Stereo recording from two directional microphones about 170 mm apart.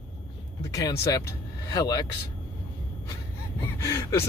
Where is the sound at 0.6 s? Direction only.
20° left (ahead or behind).